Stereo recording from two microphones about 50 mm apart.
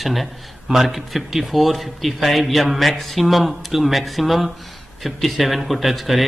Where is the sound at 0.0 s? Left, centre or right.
Centre.